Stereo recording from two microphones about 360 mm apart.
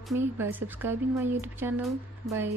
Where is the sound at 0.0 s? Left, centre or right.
Centre.